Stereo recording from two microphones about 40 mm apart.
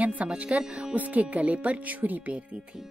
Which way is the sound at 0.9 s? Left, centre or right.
Right.